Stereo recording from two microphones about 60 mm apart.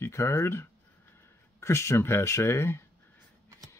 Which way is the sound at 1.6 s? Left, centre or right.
Left.